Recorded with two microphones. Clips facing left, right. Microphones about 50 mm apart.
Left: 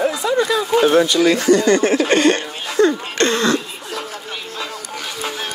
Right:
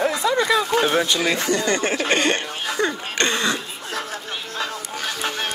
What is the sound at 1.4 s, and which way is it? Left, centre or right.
Speech, left.